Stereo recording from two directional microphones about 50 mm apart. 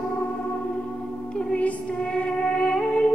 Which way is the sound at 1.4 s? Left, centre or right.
Left.